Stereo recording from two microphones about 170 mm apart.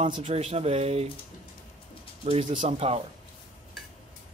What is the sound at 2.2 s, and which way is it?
Speech, 35° right (ahead or behind).